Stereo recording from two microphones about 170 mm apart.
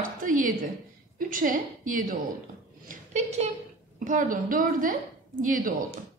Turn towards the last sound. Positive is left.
turn(degrees=-55)  # may be behind; listen again after turning